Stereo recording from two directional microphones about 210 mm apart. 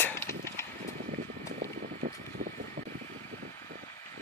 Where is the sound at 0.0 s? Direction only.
15° left (ahead or behind).